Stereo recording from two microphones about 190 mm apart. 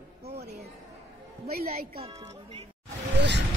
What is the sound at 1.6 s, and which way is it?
Speech, 50° right (ahead or behind).